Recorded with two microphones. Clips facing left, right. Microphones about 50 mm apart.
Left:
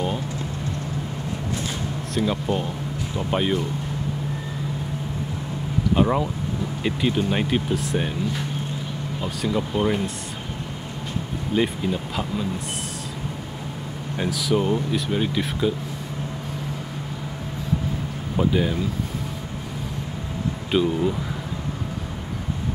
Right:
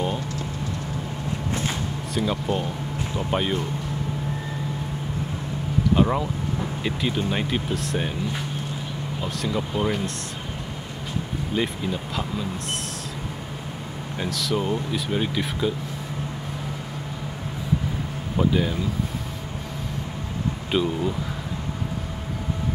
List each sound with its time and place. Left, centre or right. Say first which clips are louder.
2.2 s speech: left 1 dB; centre
5.9 s speech: left 2 dB; centre
9.2 s speech: left 2 dB; centre
11.5 s speech: left 4 dB; centre
14.1 s speech: left 3 dB; centre
18.3 s speech: left 1 dB; centre
20.7 s speech: left 3 dB; centre